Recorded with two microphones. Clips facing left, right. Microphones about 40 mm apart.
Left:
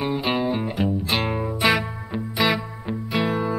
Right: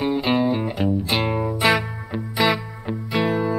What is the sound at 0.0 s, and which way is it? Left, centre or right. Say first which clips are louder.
Music: right 3 dB; centre.